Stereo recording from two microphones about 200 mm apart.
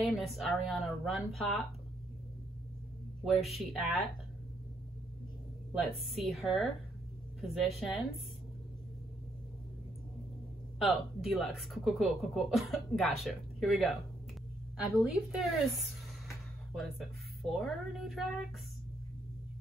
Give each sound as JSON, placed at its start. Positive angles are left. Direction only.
{"t": 0.0, "sound": "speech", "side_deg": 0}
{"t": 3.3, "sound": "speech", "side_deg": 0}
{"t": 6.0, "sound": "speech", "side_deg": 0}
{"t": 10.8, "sound": "speech", "side_deg": 0}
{"t": 17.4, "sound": "speech", "side_deg": 0}